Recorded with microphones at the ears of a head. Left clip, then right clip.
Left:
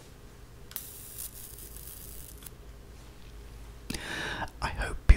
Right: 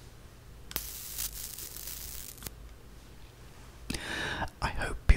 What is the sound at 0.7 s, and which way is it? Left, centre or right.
Rub, right.